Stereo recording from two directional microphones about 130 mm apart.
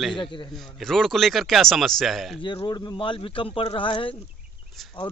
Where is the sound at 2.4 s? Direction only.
35° left (ahead or behind).